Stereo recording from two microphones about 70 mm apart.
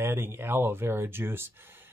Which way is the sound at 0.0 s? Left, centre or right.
Right.